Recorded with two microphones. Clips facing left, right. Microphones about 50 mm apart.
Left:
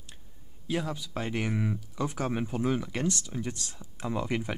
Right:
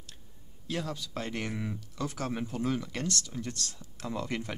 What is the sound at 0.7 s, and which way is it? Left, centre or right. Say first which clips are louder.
Speech: left 3 dB; centre.